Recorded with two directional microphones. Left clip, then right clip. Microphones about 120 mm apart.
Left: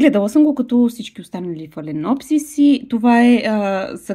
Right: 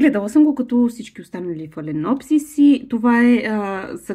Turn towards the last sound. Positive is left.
turn(degrees=25)  # may be behind; listen again after turning